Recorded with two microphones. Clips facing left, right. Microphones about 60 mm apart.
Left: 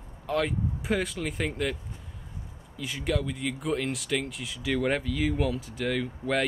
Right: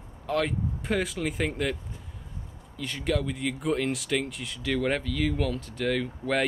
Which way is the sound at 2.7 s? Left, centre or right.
Centre.